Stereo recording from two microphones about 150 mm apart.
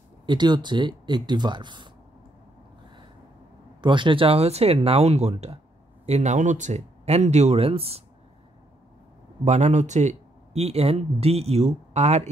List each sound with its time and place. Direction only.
0.3 s speech: 30° right (ahead or behind)
3.8 s speech: 30° right (ahead or behind)
9.4 s speech: 50° right (ahead or behind)